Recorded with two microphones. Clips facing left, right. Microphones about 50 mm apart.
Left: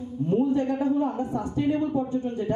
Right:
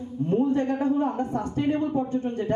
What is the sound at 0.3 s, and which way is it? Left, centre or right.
A woman's voice, right.